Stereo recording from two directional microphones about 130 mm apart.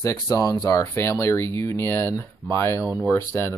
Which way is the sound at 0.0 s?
25° left (ahead or behind).